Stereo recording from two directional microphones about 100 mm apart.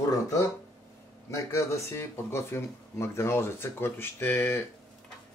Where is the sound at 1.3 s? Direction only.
30° left (ahead or behind).